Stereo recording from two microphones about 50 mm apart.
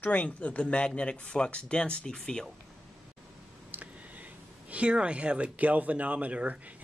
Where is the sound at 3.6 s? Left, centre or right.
Right.